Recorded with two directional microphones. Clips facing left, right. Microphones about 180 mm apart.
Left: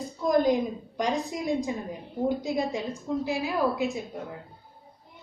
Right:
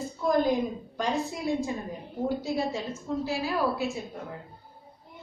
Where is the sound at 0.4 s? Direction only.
15° left (ahead or behind).